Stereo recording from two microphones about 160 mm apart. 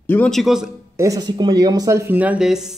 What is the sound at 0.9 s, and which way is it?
Speech, 20° right (ahead or behind).